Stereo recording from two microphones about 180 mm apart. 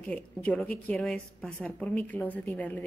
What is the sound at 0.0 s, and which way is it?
A woman's voice, 5° left (ahead or behind).